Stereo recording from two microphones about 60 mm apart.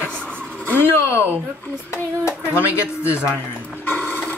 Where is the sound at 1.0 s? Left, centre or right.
Left.